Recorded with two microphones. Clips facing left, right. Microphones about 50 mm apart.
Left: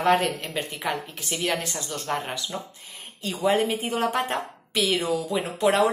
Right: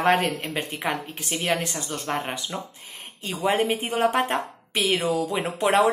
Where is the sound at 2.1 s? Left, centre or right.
Centre.